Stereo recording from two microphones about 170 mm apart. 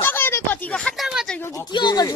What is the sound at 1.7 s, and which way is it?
Speech, 25° left (ahead or behind).